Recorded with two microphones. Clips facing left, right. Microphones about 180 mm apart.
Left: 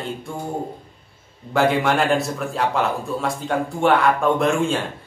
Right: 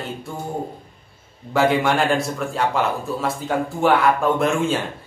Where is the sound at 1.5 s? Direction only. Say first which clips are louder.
Even; centre (ahead or behind).